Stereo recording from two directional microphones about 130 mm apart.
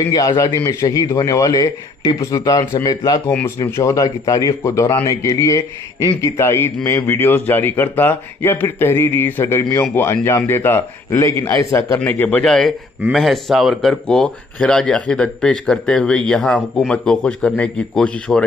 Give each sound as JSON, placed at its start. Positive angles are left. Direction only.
{"t": 0.1, "sound": "a man's voice", "side_deg": 30}
{"t": 3.3, "sound": "a man's voice", "side_deg": 15}
{"t": 12.0, "sound": "speech", "side_deg": 15}